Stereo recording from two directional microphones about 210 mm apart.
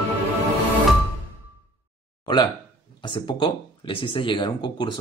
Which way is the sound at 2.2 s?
20° left (ahead or behind).